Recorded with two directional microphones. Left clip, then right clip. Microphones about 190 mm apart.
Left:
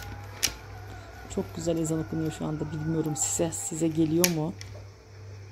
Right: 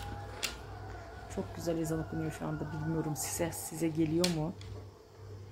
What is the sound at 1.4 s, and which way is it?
A woman's voice, 10° left (ahead or behind).